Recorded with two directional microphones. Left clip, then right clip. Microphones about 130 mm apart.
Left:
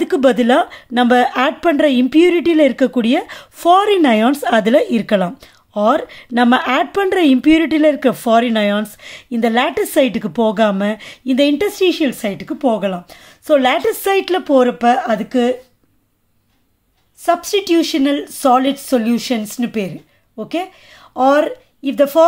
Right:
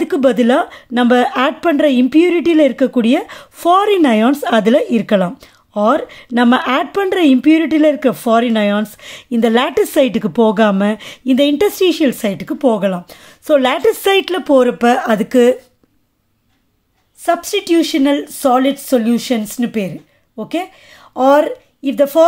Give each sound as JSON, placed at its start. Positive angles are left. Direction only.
{"t": 0.0, "sound": "speech", "side_deg": -10}
{"t": 9.0, "sound": "a woman's voice", "side_deg": -25}
{"t": 17.2, "sound": "speech", "side_deg": -10}